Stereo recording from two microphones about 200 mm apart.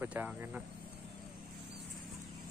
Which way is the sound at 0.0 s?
10° right (ahead or behind).